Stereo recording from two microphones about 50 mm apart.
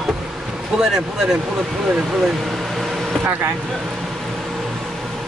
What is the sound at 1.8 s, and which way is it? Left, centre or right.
Vehicle, centre.